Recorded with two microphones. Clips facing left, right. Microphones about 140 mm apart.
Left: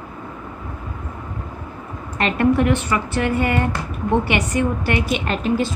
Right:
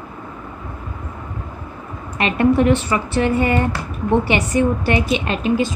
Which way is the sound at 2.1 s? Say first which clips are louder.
Right 1 dB; 15° right (ahead or behind).